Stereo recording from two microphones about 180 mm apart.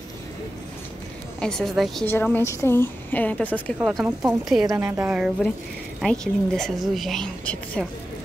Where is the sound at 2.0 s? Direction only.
10° left (ahead or behind).